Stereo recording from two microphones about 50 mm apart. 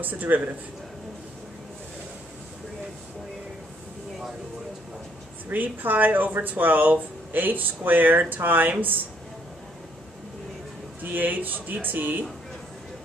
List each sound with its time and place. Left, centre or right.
0.0 s speech: right
5.5 s speech: right
11.0 s speech: right